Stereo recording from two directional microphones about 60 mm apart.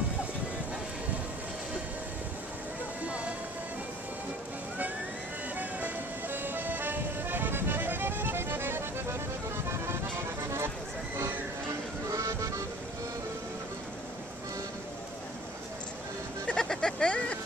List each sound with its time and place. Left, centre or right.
5.6 s music: right
12.1 s music: right
16.4 s a sound: centre